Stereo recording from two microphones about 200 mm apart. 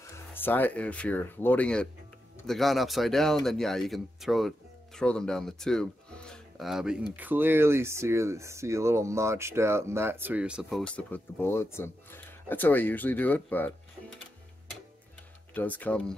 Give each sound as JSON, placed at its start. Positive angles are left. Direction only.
{"t": 0.0, "sound": "speech", "side_deg": 10}
{"t": 11.0, "sound": "speech", "side_deg": 10}
{"t": 15.5, "sound": "speech", "side_deg": 10}